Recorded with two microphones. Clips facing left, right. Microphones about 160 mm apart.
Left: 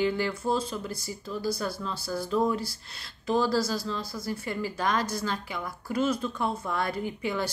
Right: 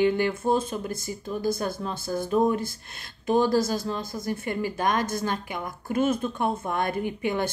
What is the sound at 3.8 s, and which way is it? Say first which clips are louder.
Speech: right 3 dB; 50° right (ahead or behind).